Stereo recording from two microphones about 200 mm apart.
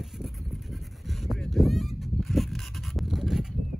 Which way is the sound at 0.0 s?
Centre (ahead or behind).